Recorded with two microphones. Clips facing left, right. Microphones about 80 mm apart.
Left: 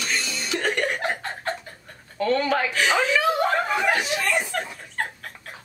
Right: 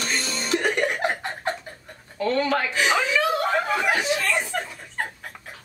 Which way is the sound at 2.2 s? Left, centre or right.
Centre.